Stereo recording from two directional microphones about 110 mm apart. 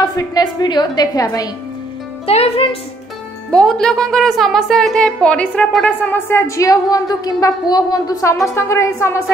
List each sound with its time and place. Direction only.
0.0 s a woman's voice: 35° left (ahead or behind)
2.2 s speech: 65° left (ahead or behind)
3.4 s a woman's voice: 5° left (ahead or behind); by 9.2 s 25° left (ahead or behind)